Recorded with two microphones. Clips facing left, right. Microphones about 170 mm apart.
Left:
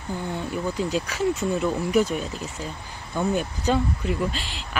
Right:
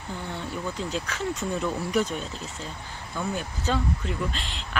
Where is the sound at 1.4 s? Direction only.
Centre (ahead or behind).